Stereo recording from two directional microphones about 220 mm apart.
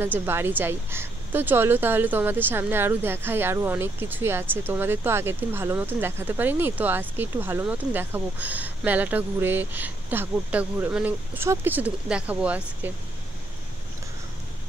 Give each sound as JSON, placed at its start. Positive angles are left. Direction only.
{"t": 0.0, "sound": "a woman's voice", "side_deg": -10}